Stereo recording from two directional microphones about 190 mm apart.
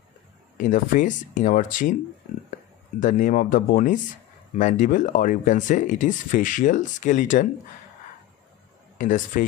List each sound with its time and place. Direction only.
0.6 s speech: 45° left (ahead or behind)
3.0 s speech: 45° left (ahead or behind)
8.9 s speech: 45° left (ahead or behind)